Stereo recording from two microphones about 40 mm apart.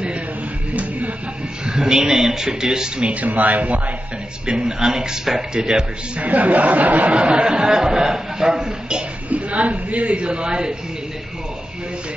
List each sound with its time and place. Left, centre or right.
1.7 s speech: centre
3.0 s speech: right
4.5 s speech: right
6.1 s speech: right
7.2 s a man's voice: right
9.3 s a man's voice: right